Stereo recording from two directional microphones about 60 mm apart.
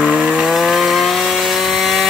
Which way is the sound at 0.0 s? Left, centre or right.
Centre.